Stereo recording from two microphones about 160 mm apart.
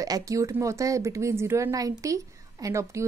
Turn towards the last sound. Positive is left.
turn(degrees=-20)  # may be behind; listen again after turning